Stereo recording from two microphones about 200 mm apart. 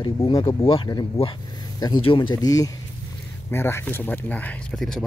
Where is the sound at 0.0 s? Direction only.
25° left (ahead or behind).